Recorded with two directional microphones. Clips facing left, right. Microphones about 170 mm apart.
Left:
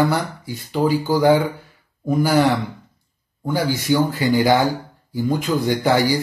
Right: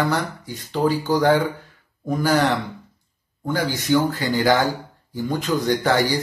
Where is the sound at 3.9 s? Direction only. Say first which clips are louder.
Left 2 dB; 15° left (ahead or behind).